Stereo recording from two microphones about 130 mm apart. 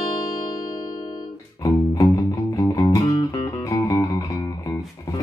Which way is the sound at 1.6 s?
25° left (ahead or behind).